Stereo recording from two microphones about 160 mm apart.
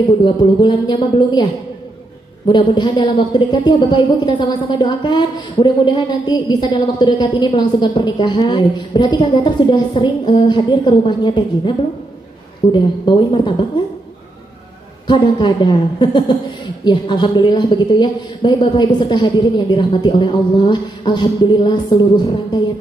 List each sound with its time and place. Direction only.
0.2 s a woman's voice: 30° left (ahead or behind)
12.7 s a woman's voice: 30° left (ahead or behind)
15.0 s a woman's voice: 30° left (ahead or behind)